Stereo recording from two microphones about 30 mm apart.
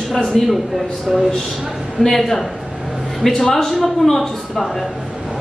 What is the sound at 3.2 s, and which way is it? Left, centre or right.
A man's voice, centre.